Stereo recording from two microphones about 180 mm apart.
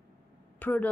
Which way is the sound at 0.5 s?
10° left (ahead or behind).